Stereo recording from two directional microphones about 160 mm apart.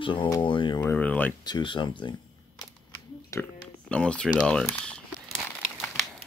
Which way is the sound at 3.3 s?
20° left (ahead or behind).